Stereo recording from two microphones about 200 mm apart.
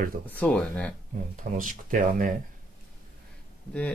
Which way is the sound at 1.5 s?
40° right (ahead or behind).